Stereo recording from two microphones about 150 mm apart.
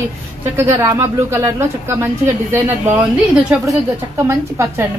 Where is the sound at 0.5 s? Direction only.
15° right (ahead or behind).